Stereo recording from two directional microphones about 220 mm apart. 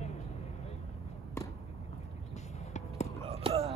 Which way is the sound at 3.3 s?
25° right (ahead or behind).